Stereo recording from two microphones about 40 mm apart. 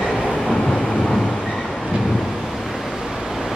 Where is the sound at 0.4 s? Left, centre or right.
Centre.